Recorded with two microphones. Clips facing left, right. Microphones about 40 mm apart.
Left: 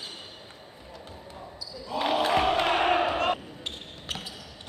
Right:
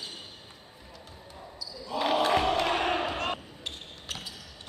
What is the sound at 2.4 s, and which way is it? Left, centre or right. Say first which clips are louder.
Battle cry: left 3 dB; centre.